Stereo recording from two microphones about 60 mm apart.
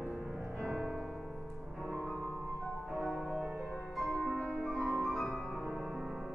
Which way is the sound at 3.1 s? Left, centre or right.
Centre.